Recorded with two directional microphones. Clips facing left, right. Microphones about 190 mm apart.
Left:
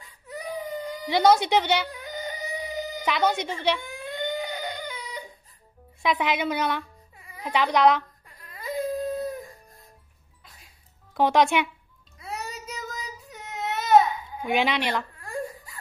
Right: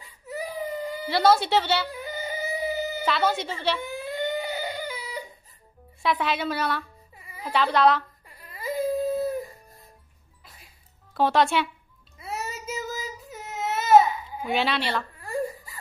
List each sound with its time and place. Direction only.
0.0 s wail: 5° right (ahead or behind)
1.0 s speech: 20° left (ahead or behind)
1.9 s a sound: 5° right (ahead or behind)
3.1 s speech: 15° left (ahead or behind)
3.8 s baby cry: centre (ahead or behind)
6.0 s speech: 15° left (ahead or behind)
8.4 s baby cry: 5° right (ahead or behind)
11.1 s speech: 15° left (ahead or behind)
12.2 s child singing: 5° right (ahead or behind)
14.5 s speech: 15° left (ahead or behind)
15.1 s giggle: centre (ahead or behind)